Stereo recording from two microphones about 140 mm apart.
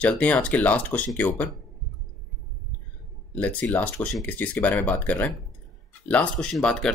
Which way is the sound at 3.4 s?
10° left (ahead or behind).